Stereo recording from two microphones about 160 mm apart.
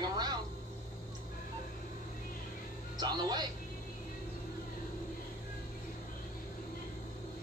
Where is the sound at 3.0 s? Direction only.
25° right (ahead or behind).